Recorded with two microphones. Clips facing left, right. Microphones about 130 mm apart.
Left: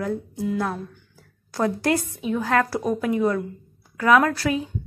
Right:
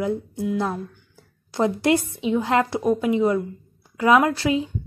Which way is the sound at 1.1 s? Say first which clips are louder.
Right 1 dB; 20° right (ahead or behind).